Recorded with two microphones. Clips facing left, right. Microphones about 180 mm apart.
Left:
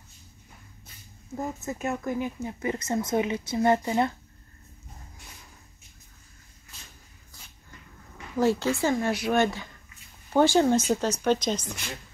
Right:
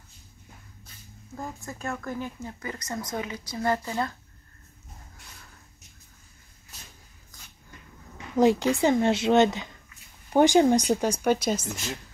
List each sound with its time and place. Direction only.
1.3 s speech: 20° left (ahead or behind)
8.4 s speech: 15° right (ahead or behind)